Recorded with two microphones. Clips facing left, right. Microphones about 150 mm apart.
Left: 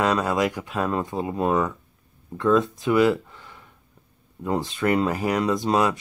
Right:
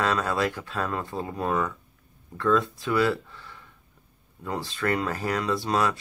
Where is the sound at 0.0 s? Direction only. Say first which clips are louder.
Left 4 dB; 15° left (ahead or behind).